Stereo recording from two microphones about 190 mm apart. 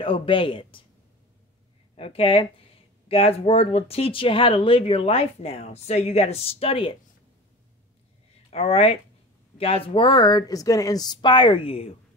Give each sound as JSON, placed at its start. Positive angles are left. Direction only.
{"t": 0.0, "sound": "speech", "side_deg": 30}
{"t": 2.0, "sound": "speech", "side_deg": 30}
{"t": 8.5, "sound": "speech", "side_deg": 35}